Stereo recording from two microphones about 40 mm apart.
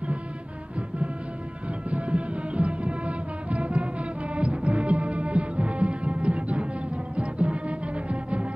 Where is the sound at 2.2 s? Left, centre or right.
Right.